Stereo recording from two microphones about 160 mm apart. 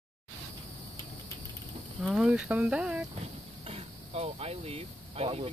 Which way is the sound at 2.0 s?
5° right (ahead or behind).